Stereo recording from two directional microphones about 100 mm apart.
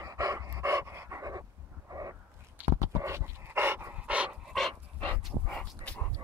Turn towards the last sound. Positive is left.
turn(degrees=15)  # may be behind; listen again after turning